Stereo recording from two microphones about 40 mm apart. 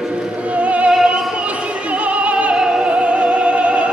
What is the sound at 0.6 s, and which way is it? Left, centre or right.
Opera, right.